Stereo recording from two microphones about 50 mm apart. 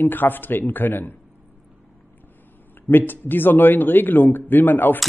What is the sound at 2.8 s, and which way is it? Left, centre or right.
Speech, left.